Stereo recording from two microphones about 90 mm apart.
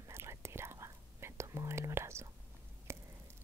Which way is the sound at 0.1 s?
30° right (ahead or behind).